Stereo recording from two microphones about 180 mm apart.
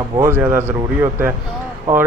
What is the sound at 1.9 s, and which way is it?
Speech, 10° right (ahead or behind).